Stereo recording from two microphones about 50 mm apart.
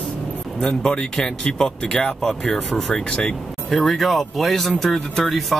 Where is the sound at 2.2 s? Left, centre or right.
Centre.